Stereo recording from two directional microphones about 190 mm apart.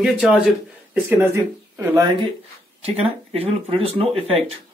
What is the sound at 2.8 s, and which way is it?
Speech, 30° right (ahead or behind).